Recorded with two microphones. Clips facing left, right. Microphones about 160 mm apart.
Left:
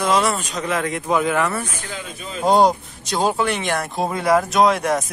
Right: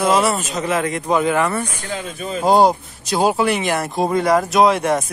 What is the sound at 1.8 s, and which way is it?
Speech, 45° right (ahead or behind).